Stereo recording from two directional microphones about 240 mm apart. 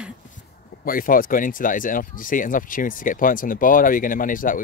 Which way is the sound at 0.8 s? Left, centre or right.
Left.